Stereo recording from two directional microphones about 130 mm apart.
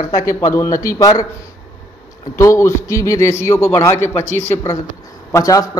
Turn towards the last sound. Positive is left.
turn(degrees=25)  # may be behind; listen again after turning